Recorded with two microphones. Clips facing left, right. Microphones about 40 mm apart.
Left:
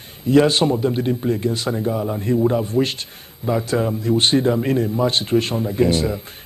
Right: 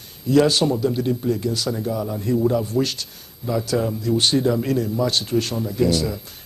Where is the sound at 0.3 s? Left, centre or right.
Left.